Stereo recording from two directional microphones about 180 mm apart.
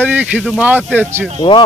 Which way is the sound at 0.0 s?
10° right (ahead or behind).